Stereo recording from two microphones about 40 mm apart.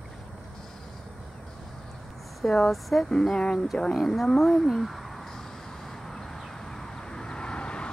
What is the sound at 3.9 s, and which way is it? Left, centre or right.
Speech, centre.